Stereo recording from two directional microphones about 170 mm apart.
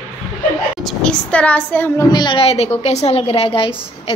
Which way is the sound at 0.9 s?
5° left (ahead or behind).